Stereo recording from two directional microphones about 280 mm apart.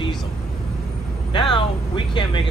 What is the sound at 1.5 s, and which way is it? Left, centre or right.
Speech, centre.